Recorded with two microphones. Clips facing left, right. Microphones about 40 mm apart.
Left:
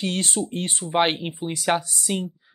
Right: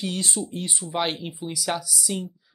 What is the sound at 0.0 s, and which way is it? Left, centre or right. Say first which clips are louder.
Speech: left 3 dB; left.